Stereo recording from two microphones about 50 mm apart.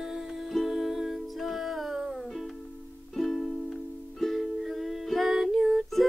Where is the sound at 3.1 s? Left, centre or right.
Centre.